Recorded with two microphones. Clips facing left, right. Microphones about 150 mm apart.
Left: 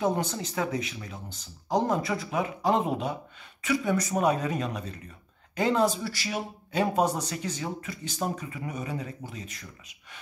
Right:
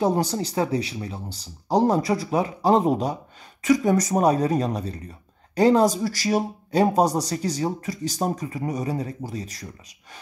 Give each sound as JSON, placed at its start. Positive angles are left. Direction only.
{"t": 0.0, "sound": "speech", "side_deg": -35}